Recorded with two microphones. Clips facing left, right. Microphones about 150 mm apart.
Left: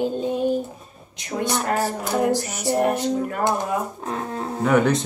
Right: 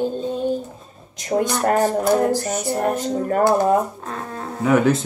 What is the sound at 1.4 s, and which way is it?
Speech, 45° right (ahead or behind).